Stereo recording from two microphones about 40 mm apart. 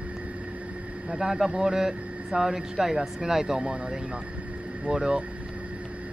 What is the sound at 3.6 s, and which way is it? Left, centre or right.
Speech, right.